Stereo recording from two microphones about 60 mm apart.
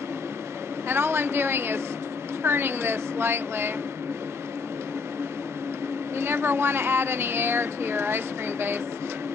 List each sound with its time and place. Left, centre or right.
0.8 s a woman's voice: right
6.1 s speech: right